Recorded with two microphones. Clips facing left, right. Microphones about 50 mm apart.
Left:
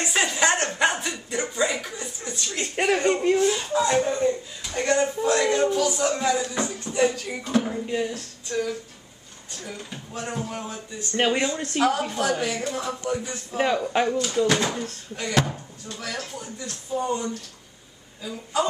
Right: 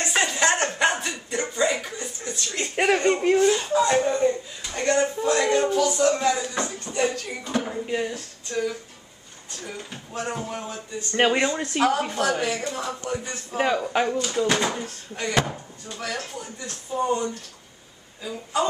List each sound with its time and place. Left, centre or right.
0.0 s a sound: centre
0.7 s dog: centre
3.3 s speech: centre
7.8 s speech: centre
8.5 s speech: centre
18.2 s speech: centre